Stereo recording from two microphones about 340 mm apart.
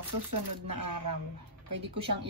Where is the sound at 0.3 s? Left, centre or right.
Right.